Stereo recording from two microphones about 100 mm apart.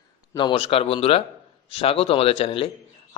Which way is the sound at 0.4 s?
65° left (ahead or behind).